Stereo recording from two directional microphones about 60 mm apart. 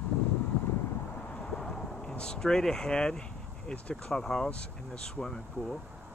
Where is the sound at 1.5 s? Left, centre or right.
Centre.